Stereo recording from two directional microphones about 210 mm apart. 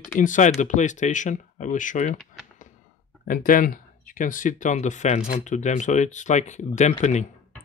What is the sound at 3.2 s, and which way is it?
Speech, 40° left (ahead or behind).